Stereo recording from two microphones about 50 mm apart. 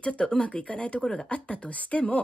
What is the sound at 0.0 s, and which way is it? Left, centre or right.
Speech, left.